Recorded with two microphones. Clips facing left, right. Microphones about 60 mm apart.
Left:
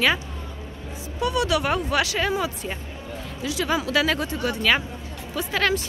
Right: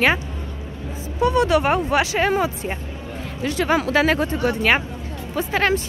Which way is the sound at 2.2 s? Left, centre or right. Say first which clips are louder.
Right 5 dB; right.